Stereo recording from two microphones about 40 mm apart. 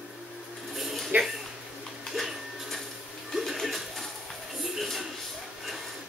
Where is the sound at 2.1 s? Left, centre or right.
Centre.